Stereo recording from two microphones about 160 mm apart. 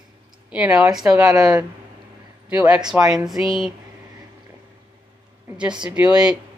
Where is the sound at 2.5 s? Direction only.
10° right (ahead or behind).